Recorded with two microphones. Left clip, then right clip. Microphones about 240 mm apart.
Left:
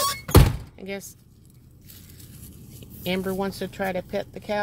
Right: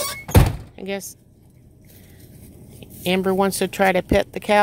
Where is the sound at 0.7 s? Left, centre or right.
Right.